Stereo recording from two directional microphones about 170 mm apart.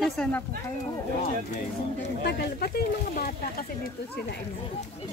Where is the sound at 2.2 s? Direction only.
70° left (ahead or behind).